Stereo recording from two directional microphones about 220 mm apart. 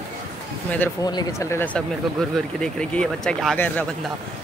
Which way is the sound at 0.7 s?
5° left (ahead or behind).